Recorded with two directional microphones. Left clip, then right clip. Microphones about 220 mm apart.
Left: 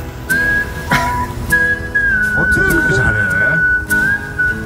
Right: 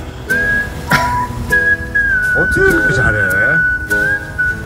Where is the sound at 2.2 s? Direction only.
Centre (ahead or behind).